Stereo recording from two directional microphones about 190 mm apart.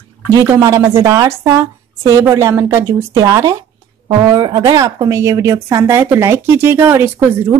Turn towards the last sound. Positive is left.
turn(degrees=-15)  # may be behind; listen again after turning